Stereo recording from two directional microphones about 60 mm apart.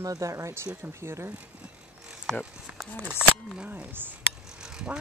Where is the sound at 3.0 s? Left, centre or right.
Centre.